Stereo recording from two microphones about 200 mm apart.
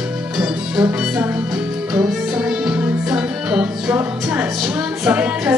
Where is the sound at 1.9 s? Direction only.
15° right (ahead or behind).